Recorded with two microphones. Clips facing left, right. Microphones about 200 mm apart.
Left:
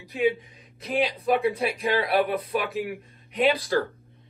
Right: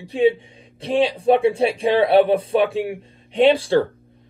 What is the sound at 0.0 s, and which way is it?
Speech, 30° right (ahead or behind).